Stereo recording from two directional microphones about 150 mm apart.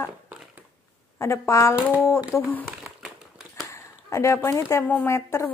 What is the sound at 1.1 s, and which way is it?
Speech, 20° left (ahead or behind).